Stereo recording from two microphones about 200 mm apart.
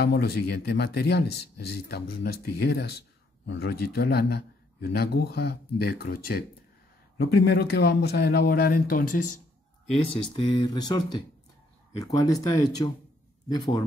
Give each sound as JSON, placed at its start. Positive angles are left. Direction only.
{"t": 0.0, "sound": "speech", "side_deg": 50}
{"t": 10.3, "sound": "speech", "side_deg": 20}